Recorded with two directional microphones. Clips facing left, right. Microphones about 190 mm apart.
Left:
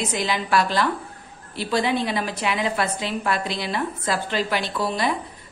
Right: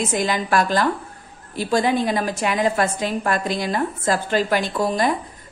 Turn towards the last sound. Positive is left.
turn(degrees=-45)  # may be behind; listen again after turning